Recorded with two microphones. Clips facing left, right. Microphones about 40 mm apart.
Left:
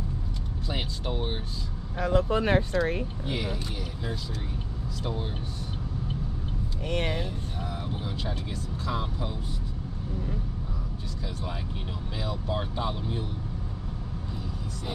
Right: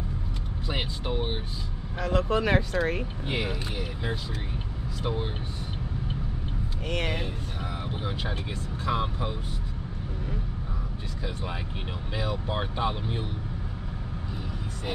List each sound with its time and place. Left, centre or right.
0.7 s speech: centre
2.1 s speech: right
3.3 s speech: right
5.0 s speech: right
7.9 s speech: right
12.2 s speech: right